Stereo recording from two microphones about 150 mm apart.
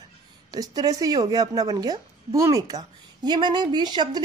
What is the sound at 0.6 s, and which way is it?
A woman's voice, 25° right (ahead or behind).